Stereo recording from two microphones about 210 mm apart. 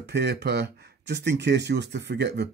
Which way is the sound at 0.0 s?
55° right (ahead or behind).